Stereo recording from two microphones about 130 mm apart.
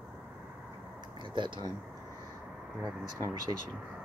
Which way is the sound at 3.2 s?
30° right (ahead or behind).